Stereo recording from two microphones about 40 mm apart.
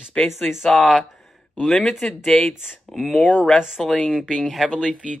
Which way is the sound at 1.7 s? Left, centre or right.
Centre.